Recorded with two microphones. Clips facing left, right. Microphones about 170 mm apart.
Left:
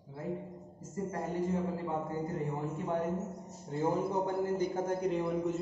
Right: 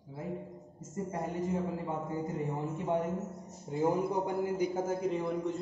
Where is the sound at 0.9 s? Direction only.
20° right (ahead or behind).